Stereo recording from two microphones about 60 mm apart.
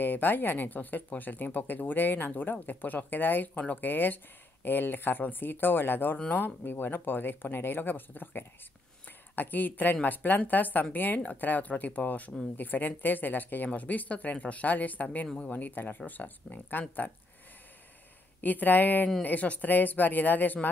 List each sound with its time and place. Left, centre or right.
0.0 s speech: left
18.4 s speech: left